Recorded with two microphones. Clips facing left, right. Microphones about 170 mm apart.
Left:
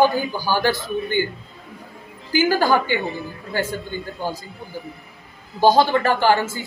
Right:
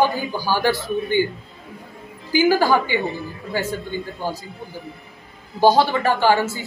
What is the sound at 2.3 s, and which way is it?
A woman's voice, 5° right (ahead or behind).